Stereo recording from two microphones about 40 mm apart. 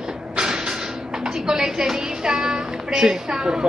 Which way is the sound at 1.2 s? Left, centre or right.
Centre.